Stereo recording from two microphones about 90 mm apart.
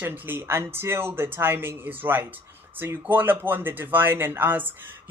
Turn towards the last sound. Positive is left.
turn(degrees=-20)  # may be behind; listen again after turning